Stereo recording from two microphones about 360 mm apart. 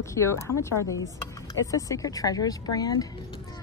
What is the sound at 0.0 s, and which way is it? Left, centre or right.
Speech, centre.